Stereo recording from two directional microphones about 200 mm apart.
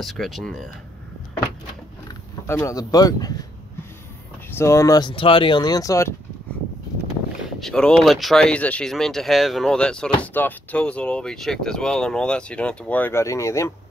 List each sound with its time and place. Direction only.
0.0 s speech: centre (ahead or behind)
2.4 s speech: 15° left (ahead or behind)
4.5 s speech: 15° left (ahead or behind)
7.4 s speech: 5° left (ahead or behind)